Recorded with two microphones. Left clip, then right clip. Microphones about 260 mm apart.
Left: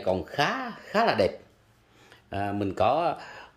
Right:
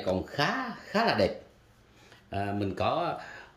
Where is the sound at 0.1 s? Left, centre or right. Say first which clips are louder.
Left 3 dB; centre.